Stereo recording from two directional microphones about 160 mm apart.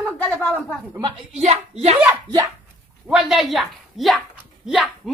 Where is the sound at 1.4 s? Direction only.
45° right (ahead or behind).